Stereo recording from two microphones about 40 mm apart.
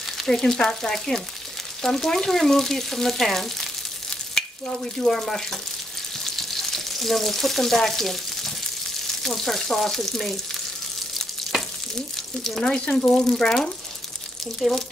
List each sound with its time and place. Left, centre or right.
0.3 s frying: centre
4.4 s sizzle: centre
4.9 s frying: centre
12.4 s frying: centre
14.6 s speech: centre